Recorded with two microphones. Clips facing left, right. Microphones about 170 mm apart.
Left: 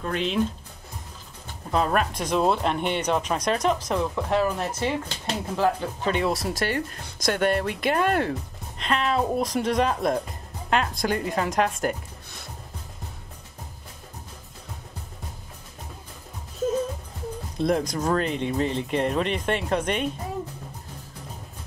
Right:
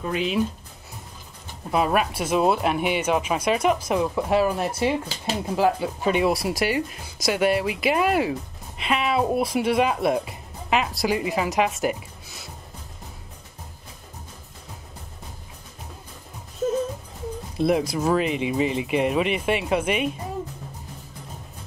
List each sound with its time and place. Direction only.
0.0 s speech: 5° right (ahead or behind)
1.7 s speech: 10° right (ahead or behind)
17.6 s speech: 5° right (ahead or behind)